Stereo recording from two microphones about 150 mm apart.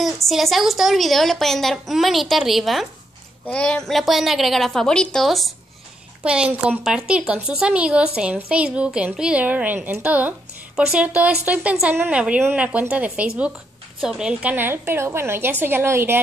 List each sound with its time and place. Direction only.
0.0 s a woman's voice: centre (ahead or behind); by 16.2 s 15° right (ahead or behind)